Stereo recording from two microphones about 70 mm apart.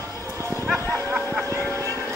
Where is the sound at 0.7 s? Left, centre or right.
Left.